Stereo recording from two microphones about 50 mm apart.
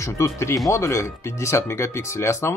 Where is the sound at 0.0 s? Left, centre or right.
Left.